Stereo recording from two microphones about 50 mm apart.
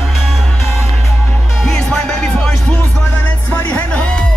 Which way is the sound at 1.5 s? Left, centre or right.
Centre.